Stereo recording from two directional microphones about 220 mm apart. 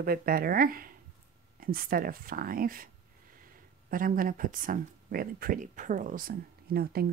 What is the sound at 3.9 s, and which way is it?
Speech, 40° right (ahead or behind).